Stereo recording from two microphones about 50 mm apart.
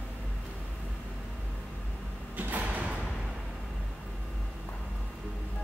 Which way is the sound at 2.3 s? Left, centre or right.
Right.